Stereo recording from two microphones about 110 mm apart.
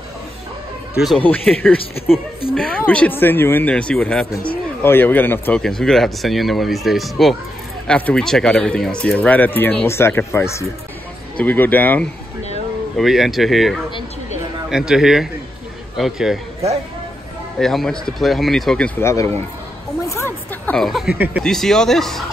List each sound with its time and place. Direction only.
1.2 s speech: 15° left (ahead or behind)
5.6 s speech: 5° left (ahead or behind)
12.9 s speech: centre (ahead or behind)
17.6 s speech: 5° left (ahead or behind)
18.9 s speech: 25° left (ahead or behind)
20.1 s a sound: 25° left (ahead or behind)
20.7 s speech: centre (ahead or behind)